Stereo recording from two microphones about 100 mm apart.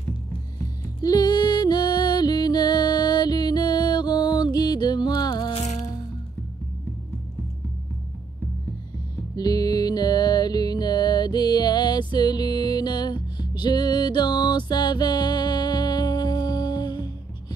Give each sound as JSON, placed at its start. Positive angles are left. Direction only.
{"t": 1.0, "sound": "music", "side_deg": 40}
{"t": 5.5, "sound": "music", "side_deg": 90}
{"t": 9.3, "sound": "music", "side_deg": 40}